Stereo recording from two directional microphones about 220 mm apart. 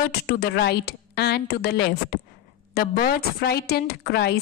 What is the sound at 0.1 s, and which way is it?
A woman's voice, 45° left (ahead or behind).